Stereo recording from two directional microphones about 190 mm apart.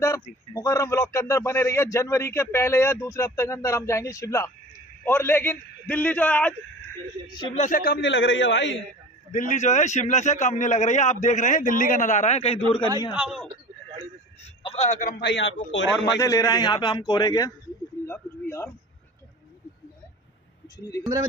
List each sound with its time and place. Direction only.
0.5 s a man's voice: 20° left (ahead or behind)
7.5 s a man's voice: 45° left (ahead or behind); by 8.7 s 70° left (ahead or behind)
9.3 s a man's voice: 40° left (ahead or behind)
13.1 s speech: 5° right (ahead or behind)
14.4 s a man's voice: 30° left (ahead or behind)
15.1 s a man's voice: 65° left (ahead or behind)
16.2 s a man's voice: 20° left (ahead or behind)